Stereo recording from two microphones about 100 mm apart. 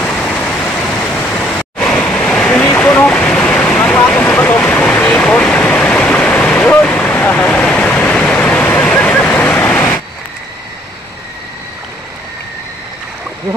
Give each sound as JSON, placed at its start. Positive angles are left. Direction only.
{"t": 0.0, "sound": "vehicle", "side_deg": 10}
{"t": 0.4, "sound": "vehicle", "side_deg": 25}
{"t": 1.1, "sound": "waterfall", "side_deg": 10}
{"t": 7.4, "sound": "waterfall", "side_deg": 5}